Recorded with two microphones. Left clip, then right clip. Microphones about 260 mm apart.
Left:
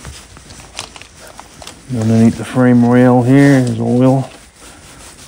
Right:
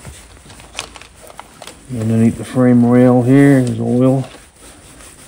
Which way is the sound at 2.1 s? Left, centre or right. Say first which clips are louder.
Left 2 dB; left.